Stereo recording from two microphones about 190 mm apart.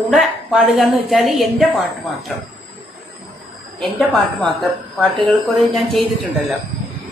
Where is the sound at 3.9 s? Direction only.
5° left (ahead or behind).